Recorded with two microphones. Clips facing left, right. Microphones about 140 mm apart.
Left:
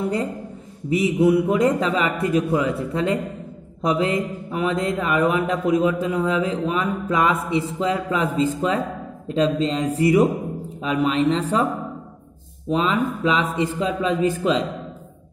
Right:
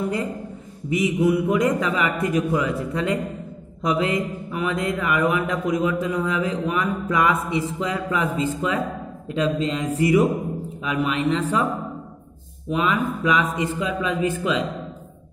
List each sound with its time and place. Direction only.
0.8 s a man's voice: 30° left (ahead or behind)
12.6 s a man's voice: 30° left (ahead or behind)